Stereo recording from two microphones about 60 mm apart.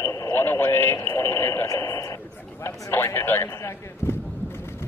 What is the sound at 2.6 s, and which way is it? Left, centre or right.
A man's voice, left.